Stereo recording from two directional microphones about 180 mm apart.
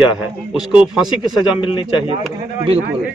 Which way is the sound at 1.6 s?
25° left (ahead or behind).